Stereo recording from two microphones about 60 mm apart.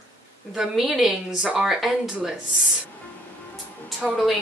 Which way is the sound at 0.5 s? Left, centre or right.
Centre.